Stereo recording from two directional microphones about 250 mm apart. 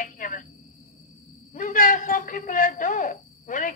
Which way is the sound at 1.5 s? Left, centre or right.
Left.